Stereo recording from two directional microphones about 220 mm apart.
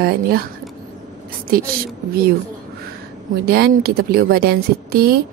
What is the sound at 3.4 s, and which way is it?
A woman's voice, 45° right (ahead or behind).